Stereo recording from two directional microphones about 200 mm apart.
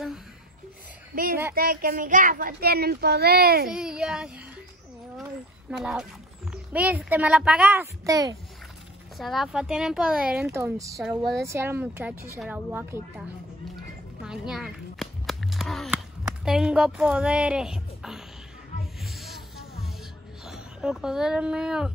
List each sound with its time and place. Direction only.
1.1 s a child's voice: 45° right (ahead or behind)
3.6 s speech: 5° right (ahead or behind)
5.2 s a sound: 5° right (ahead or behind)
6.5 s a child's voice: 5° right (ahead or behind)
9.2 s speech: centre (ahead or behind)
11.0 s speech: centre (ahead or behind)
11.4 s a child's voice: 10° right (ahead or behind)
14.2 s a sound: 5° right (ahead or behind)
19.0 s music: centre (ahead or behind)
20.4 s speech: centre (ahead or behind)